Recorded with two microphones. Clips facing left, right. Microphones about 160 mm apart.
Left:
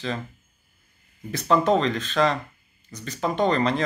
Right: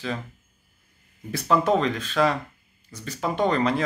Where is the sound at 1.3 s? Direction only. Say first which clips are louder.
Left 1 dB; 10° right (ahead or behind).